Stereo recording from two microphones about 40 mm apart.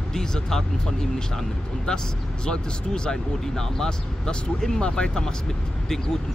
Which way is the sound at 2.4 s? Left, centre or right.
Centre.